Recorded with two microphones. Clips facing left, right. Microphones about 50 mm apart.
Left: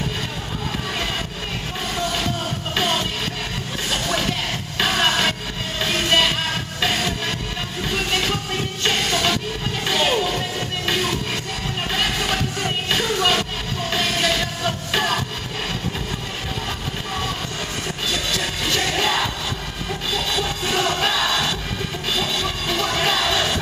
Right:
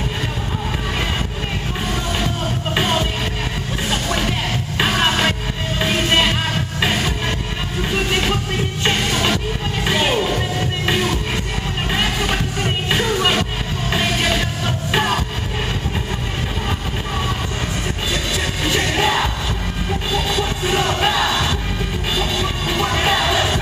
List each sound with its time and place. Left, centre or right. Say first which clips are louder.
2.7 s music: right 2 dB; centre
4.7 s music: right 2 dB; centre
18.1 s music: right 2 dB; centre